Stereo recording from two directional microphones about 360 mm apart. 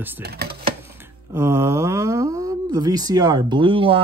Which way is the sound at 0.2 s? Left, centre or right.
Right.